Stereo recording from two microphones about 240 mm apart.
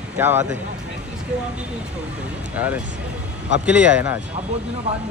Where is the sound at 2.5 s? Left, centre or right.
Centre.